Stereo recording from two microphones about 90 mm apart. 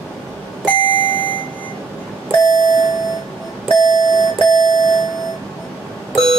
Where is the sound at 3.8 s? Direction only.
50° right (ahead or behind).